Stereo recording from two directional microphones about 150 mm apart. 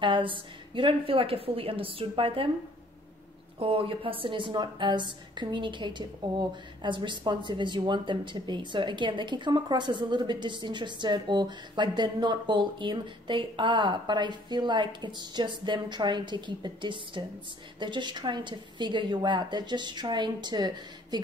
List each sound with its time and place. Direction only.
0.0 s a woman's voice: 35° right (ahead or behind)
3.5 s a woman's voice: 40° right (ahead or behind)